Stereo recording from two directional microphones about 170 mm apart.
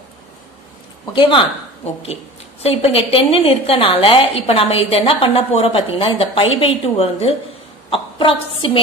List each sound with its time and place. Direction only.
1.1 s a woman's voice: 30° left (ahead or behind)
2.6 s a woman's voice: 35° left (ahead or behind)